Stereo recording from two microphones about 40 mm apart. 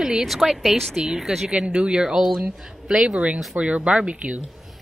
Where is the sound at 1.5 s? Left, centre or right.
Right.